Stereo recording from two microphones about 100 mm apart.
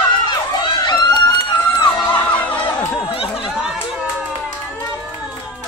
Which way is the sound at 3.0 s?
65° left (ahead or behind).